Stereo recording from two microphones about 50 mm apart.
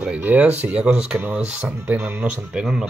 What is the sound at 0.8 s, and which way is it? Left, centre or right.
Speech, centre.